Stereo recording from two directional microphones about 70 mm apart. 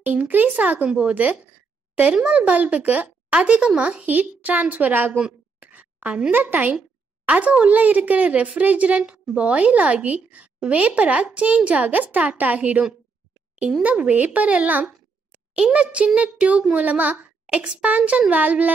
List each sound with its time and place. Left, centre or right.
0.0 s a woman's voice: right
5.6 s a sound: right
6.3 s a woman's voice: right